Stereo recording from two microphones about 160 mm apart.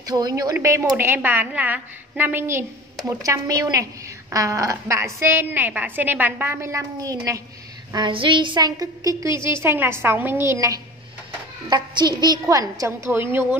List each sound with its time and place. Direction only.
0.0 s a woman's voice: 25° right (ahead or behind)